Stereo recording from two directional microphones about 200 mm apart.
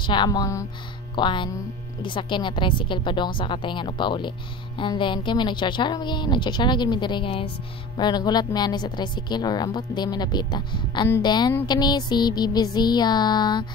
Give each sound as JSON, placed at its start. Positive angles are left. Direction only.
{"t": 0.0, "sound": "a woman's voice", "side_deg": 25}